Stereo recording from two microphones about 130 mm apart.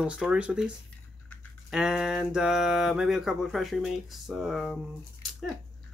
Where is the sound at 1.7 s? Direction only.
5° right (ahead or behind).